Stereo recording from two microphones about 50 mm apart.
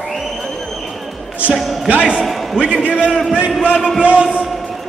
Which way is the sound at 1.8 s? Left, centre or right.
Right.